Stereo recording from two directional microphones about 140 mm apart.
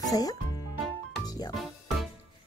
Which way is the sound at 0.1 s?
25° left (ahead or behind).